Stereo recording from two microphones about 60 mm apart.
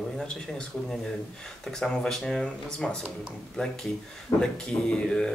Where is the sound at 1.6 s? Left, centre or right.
Centre.